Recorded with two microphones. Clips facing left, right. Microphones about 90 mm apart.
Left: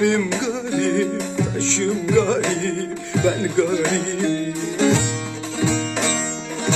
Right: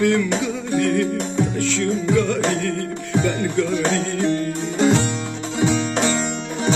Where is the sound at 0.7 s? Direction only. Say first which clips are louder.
Right 1 dB; 20° left (ahead or behind).